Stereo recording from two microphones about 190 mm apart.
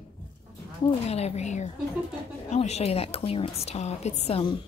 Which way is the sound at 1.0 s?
35° left (ahead or behind).